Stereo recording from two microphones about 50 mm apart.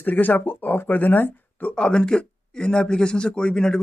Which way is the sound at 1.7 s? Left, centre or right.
Centre.